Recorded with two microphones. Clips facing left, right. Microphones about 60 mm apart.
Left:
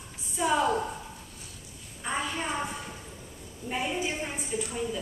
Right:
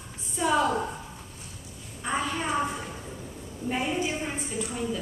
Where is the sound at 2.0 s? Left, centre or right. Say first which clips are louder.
Right 3 dB; centre.